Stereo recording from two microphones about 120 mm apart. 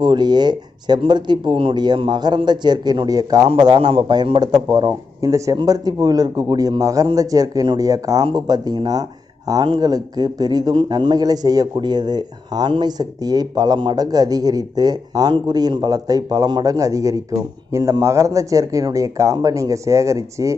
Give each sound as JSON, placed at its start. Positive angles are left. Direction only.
{"t": 0.0, "sound": "a man's voice", "side_deg": -40}